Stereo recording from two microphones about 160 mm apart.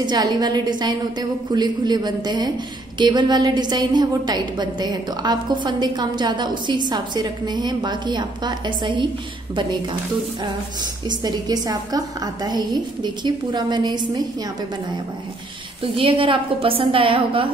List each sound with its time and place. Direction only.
0.0 s a woman's voice: 25° right (ahead or behind)
11.1 s a woman's voice: 25° right (ahead or behind)
15.8 s a woman's voice: 35° right (ahead or behind)